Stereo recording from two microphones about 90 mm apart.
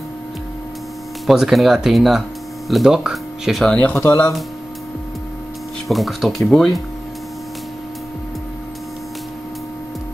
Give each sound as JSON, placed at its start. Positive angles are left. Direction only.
{"t": 1.2, "sound": "speech", "side_deg": 0}
{"t": 3.7, "sound": "speech", "side_deg": 15}
{"t": 4.0, "sound": "speech", "side_deg": 30}
{"t": 5.9, "sound": "speech", "side_deg": 0}